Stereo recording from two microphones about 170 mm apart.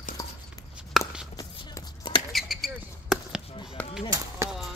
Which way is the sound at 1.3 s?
25° left (ahead or behind).